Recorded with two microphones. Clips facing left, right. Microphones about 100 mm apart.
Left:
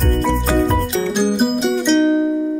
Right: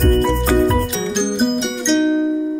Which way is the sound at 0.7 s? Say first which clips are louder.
Left 1 dB; 5° left (ahead or behind).